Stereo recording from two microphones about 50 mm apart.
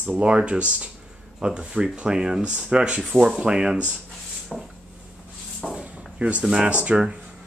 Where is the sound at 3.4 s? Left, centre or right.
Centre.